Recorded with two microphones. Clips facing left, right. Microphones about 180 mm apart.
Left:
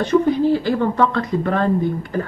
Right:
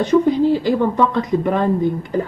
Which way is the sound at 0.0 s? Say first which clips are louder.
Right 2 dB; 15° right (ahead or behind).